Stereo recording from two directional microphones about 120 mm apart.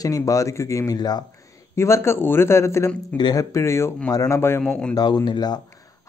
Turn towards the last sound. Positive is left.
turn(degrees=35)  # may be behind; listen again after turning